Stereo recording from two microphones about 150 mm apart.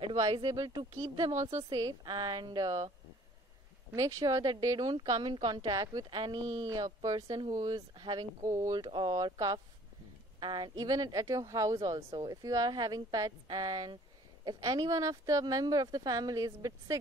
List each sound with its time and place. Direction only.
0.3 s speech: 25° right (ahead or behind)
3.9 s speech: 20° right (ahead or behind)